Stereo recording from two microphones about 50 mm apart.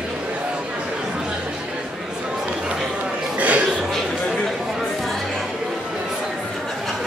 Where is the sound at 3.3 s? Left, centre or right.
Right.